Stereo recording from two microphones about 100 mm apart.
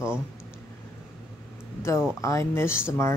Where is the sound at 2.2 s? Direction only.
30° left (ahead or behind).